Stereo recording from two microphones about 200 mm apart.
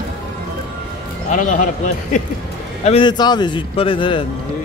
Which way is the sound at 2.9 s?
25° left (ahead or behind).